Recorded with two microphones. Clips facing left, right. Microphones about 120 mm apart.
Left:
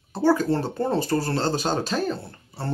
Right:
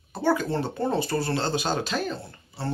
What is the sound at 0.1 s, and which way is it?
Speech, 40° left (ahead or behind).